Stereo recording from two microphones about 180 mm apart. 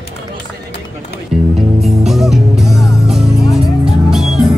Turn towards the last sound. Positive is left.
turn(degrees=-5)  # may be behind; listen again after turning